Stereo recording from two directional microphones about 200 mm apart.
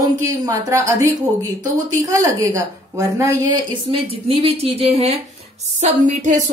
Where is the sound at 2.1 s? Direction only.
15° right (ahead or behind).